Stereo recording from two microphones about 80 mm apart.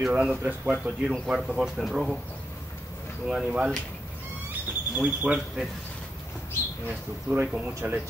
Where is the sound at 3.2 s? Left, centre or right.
Centre.